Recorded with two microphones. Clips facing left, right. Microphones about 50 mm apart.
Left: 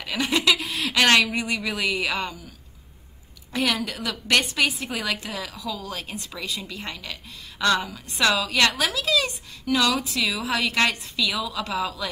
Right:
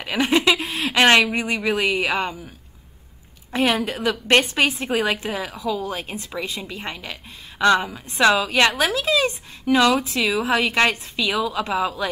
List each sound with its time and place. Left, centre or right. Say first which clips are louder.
0.0 s a woman's voice: right 4 dB; right
3.5 s a woman's voice: right 4 dB; right